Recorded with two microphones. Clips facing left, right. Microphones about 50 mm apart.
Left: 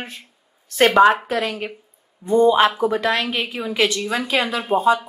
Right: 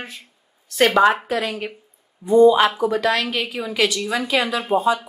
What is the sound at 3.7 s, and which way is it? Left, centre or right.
Speech, left.